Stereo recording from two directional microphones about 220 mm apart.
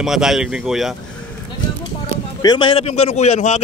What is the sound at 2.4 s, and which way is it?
A man's voice, 20° left (ahead or behind).